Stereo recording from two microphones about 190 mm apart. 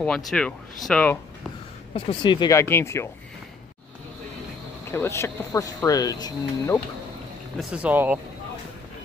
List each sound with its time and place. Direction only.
0.0 s speech: 5° left (ahead or behind)
2.0 s speech: 25° left (ahead or behind)
4.9 s speech: 15° left (ahead or behind)
7.5 s speech: 5° right (ahead or behind)